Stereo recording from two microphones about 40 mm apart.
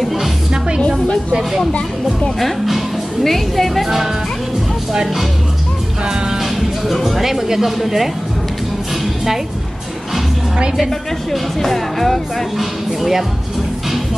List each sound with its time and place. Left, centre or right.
0.0 s music: centre
0.7 s music: centre
2.3 s speech: centre
4.9 s speech: centre
6.0 s music: centre
6.4 s speech: centre
11.3 s speech: centre